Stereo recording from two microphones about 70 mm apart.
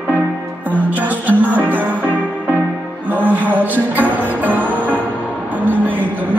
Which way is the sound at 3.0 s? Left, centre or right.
Right.